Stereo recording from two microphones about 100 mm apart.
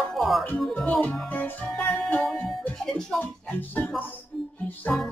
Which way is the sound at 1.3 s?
15° left (ahead or behind).